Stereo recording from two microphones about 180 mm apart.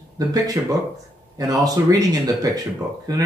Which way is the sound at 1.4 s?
20° right (ahead or behind).